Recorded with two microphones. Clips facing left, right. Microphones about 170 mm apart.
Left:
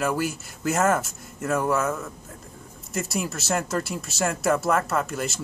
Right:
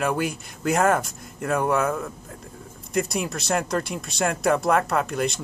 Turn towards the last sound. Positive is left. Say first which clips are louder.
# right 3 dB
turn(degrees=5)  # may be behind; listen again after turning